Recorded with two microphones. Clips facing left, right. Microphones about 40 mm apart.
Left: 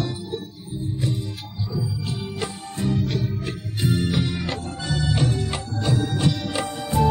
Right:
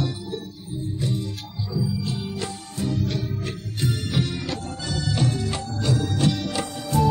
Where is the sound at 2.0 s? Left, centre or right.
Left.